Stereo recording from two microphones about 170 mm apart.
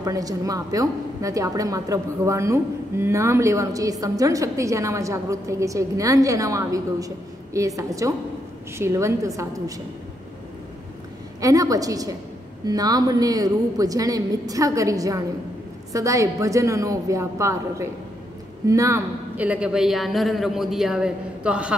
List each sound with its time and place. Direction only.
0.0 s a woman's voice: 20° right (ahead or behind)
11.4 s a woman's voice: 20° right (ahead or behind)